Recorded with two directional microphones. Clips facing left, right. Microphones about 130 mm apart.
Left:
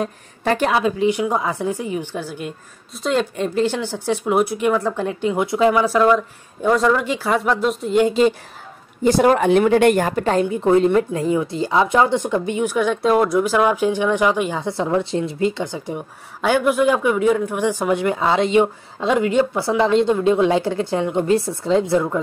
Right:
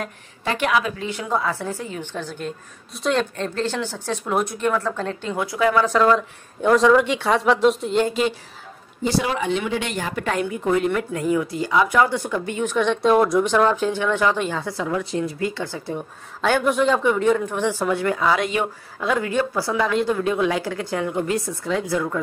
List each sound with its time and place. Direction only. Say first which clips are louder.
0.4 s a woman's voice: left 4 dB; 40° left (ahead or behind)
1.0 s speech: left 5 dB; 15° left (ahead or behind)
8.1 s a woman's voice: left 6 dB; 35° left (ahead or behind)
9.0 s speech: left 7 dB; 50° left (ahead or behind)
10.1 s a woman's voice: left 5 dB; 35° left (ahead or behind); by 14.7 s 15° left (ahead or behind)
14.7 s speech: left 5 dB; 25° left (ahead or behind)